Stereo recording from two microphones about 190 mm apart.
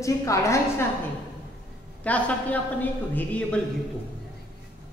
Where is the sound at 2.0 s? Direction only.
5° left (ahead or behind).